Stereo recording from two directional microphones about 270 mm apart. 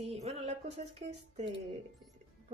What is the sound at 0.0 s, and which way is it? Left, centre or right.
Music, right.